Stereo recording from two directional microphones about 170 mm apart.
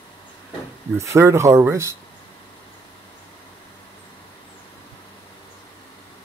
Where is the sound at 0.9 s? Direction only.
15° right (ahead or behind).